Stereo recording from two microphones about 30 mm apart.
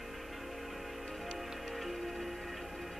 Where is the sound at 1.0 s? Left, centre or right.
Centre.